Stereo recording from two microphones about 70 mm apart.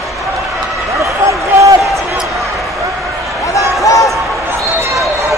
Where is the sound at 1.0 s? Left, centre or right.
Right.